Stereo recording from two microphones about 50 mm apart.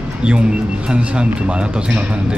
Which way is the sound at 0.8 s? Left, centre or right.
Centre.